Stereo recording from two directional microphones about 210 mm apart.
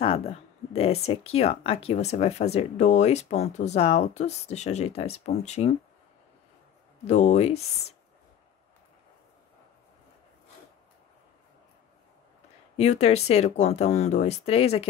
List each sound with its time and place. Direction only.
0.0 s speech: 30° left (ahead or behind)
7.1 s speech: 35° left (ahead or behind)
12.7 s speech: 30° left (ahead or behind)